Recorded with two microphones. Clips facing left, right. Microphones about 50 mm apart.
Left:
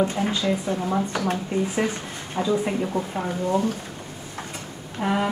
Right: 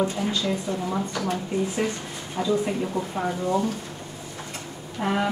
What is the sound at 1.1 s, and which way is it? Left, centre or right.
Speech, left.